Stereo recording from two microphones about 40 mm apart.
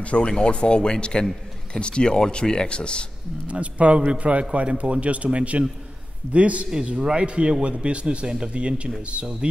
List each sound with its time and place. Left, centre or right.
0.0 s speech: left
3.4 s speech: right
6.7 s speech: right